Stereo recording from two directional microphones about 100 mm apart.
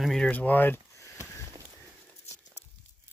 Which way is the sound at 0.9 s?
30° left (ahead or behind).